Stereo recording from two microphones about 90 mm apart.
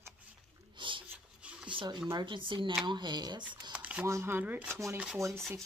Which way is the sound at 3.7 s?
15° right (ahead or behind).